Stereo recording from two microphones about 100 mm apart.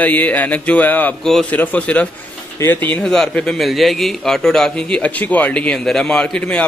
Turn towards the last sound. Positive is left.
turn(degrees=10)  # may be behind; listen again after turning